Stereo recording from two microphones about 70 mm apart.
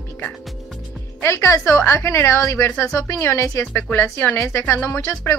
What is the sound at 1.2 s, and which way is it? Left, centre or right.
A woman's voice, left.